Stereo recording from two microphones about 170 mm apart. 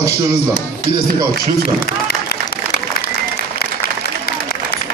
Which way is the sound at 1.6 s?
60° left (ahead or behind).